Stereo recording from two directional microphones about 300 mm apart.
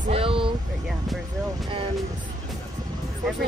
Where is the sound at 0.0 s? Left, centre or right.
Centre.